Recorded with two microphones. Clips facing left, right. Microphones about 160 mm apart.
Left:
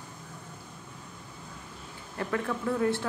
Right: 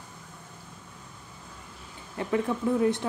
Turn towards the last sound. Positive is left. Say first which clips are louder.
# right 3 dB
turn(degrees=-20)  # may be behind; listen again after turning